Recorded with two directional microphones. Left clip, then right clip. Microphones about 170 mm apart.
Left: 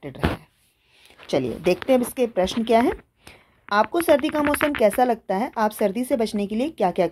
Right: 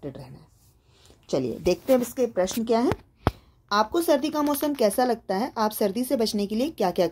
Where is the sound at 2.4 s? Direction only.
15° left (ahead or behind).